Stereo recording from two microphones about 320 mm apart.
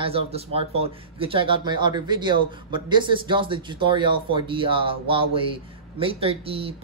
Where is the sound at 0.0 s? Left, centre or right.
Centre.